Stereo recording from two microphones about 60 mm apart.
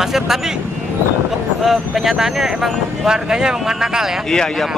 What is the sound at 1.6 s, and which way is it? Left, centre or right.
Speech, centre.